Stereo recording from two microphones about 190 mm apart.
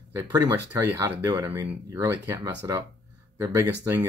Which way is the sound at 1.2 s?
20° right (ahead or behind).